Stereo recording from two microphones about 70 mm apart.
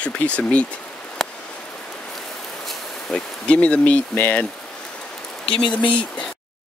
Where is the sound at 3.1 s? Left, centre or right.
Centre.